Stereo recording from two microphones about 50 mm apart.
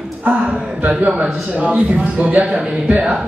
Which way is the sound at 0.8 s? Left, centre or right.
Right.